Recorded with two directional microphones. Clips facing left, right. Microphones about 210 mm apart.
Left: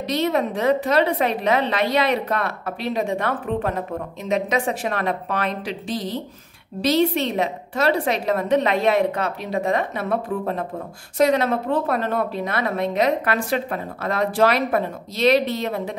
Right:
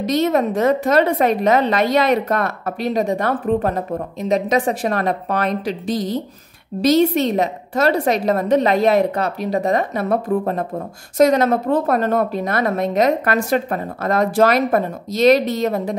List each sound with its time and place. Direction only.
0.0 s a woman's voice: 45° right (ahead or behind)